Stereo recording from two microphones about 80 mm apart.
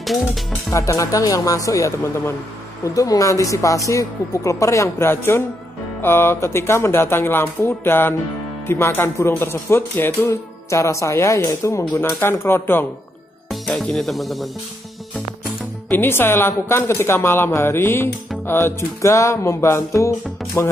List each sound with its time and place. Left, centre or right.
0.7 s speech: left
13.5 s speech: centre
15.9 s speech: left